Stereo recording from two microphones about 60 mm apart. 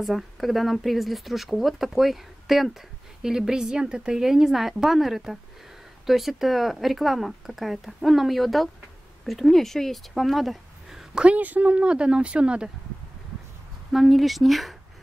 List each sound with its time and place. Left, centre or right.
0.0 s a woman's voice: centre
11.1 s a woman's voice: right
13.9 s speech: centre